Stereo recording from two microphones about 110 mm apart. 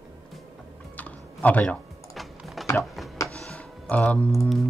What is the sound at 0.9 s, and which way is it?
Computer keyboard, 15° left (ahead or behind).